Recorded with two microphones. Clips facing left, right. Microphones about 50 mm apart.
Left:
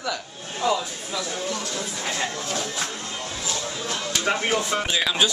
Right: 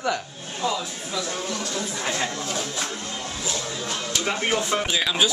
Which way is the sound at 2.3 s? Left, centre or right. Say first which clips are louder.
Even; centre.